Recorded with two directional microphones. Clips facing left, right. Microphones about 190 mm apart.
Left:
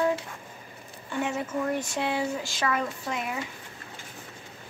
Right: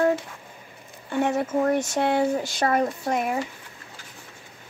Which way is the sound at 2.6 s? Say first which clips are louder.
Right 6 dB; 40° right (ahead or behind).